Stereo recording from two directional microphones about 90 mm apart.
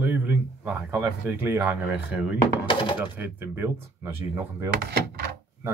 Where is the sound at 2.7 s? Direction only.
65° left (ahead or behind).